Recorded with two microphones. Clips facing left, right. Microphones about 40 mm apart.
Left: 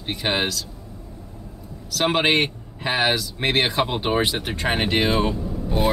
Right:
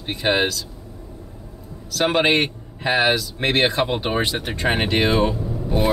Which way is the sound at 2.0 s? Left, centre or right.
Centre.